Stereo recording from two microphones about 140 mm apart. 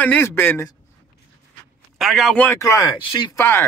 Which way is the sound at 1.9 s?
Centre (ahead or behind).